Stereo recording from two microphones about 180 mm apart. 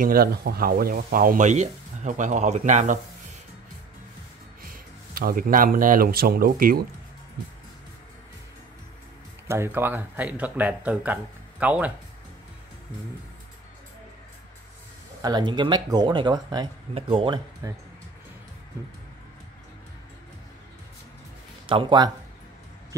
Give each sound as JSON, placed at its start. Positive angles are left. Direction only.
{"t": 0.0, "sound": "speech", "side_deg": -55}
{"t": 4.6, "sound": "speech", "side_deg": -50}
{"t": 9.5, "sound": "speech", "side_deg": -15}
{"t": 15.2, "sound": "speech", "side_deg": -25}
{"t": 21.6, "sound": "speech", "side_deg": -25}